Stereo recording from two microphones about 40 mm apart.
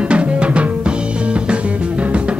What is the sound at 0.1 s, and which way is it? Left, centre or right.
Music, right.